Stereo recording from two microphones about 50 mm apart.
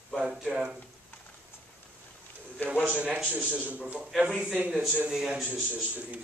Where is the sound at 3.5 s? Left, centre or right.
Right.